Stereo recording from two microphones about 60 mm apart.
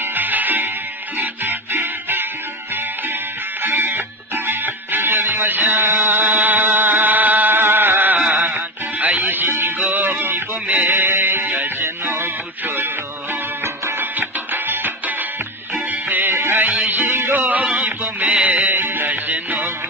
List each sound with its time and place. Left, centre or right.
0.0 s music: right
3.6 s music: right
16.6 s music: right